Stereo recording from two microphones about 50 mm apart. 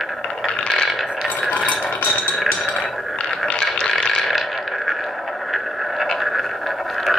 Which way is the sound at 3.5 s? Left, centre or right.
Centre.